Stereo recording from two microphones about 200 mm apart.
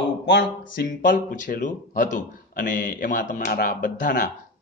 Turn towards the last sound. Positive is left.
turn(degrees=40)  # may be behind; listen again after turning